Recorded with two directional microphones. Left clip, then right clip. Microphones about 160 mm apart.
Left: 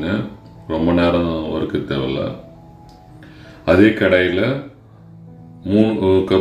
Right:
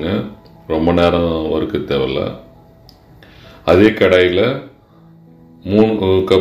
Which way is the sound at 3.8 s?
15° right (ahead or behind).